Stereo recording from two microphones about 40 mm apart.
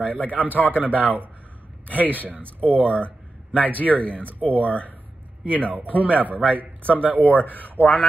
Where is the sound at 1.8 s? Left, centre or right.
Left.